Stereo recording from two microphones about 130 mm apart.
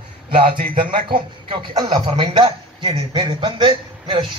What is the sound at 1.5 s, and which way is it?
A man's voice, 40° right (ahead or behind).